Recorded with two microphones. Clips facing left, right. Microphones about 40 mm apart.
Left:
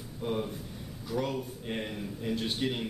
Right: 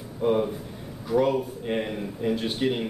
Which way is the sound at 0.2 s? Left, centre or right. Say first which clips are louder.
Right 10 dB; right.